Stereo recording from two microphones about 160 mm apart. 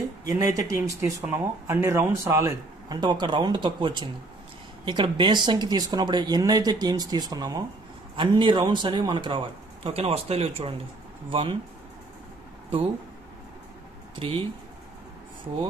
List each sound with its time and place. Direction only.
0.3 s speech: 20° right (ahead or behind)
14.2 s speech: 35° right (ahead or behind)